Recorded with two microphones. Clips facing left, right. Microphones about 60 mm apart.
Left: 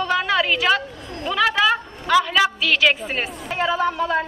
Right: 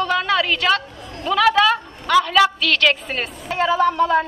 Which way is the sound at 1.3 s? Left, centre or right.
Centre.